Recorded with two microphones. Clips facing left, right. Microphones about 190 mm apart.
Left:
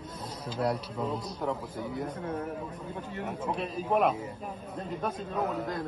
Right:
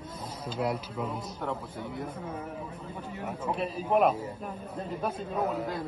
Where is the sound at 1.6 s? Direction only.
10° left (ahead or behind).